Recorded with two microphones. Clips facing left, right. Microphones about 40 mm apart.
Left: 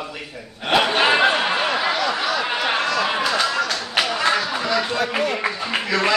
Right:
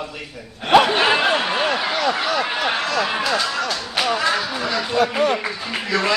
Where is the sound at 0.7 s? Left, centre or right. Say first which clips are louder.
Right 2 dB; centre.